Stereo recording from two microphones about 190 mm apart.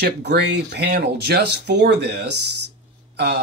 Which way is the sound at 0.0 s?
60° right (ahead or behind).